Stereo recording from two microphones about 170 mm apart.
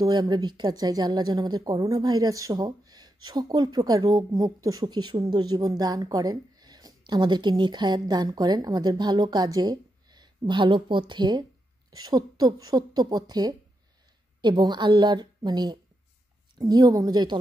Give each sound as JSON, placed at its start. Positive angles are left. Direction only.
{"t": 0.0, "sound": "speech", "side_deg": -25}